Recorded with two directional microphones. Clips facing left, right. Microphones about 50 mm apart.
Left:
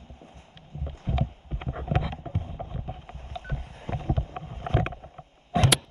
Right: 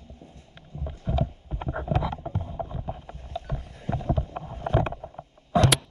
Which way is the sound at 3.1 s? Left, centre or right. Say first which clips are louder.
Right 2 dB; left.